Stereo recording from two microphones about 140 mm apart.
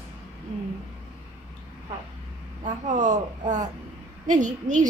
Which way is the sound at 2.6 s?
60° right (ahead or behind).